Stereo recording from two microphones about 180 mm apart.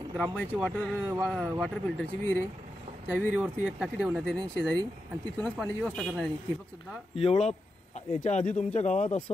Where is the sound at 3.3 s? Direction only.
5° right (ahead or behind).